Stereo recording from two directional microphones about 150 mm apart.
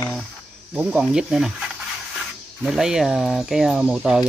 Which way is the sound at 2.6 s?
5° right (ahead or behind).